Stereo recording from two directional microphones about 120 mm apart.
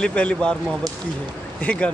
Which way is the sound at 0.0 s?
10° left (ahead or behind).